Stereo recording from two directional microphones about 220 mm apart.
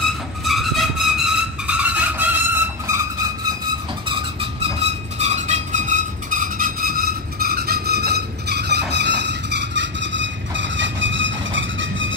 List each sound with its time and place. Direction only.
0.5 s vehicle: centre (ahead or behind)
5.2 s train: 30° right (ahead or behind); by 12.1 s 60° right (ahead or behind)